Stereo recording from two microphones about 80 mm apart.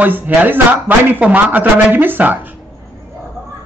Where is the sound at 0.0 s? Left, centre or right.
Right.